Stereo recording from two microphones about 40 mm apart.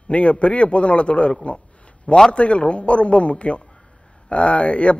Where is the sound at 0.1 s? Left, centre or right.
Left.